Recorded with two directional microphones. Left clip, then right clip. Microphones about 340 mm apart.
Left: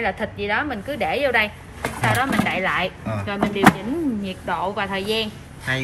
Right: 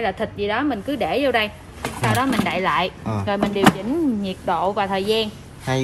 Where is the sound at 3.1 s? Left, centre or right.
Centre.